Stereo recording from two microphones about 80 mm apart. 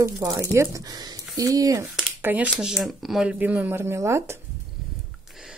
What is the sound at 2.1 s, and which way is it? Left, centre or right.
Speech, right.